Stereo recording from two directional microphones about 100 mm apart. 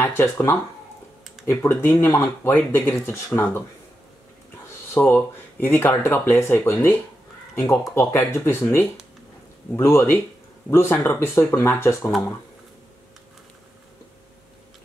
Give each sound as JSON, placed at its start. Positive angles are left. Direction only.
{"t": 0.0, "sound": "speech", "side_deg": 25}
{"t": 4.9, "sound": "speech", "side_deg": 20}
{"t": 6.7, "sound": "speech", "side_deg": 30}